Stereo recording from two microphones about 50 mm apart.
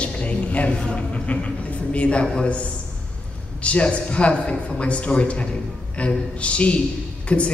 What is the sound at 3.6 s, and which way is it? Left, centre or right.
A man's voice, left.